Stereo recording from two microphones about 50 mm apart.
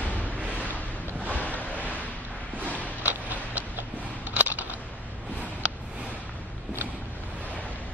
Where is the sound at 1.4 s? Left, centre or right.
Left.